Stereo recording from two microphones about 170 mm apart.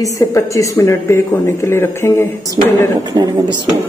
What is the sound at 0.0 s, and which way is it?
Speech, 20° left (ahead or behind).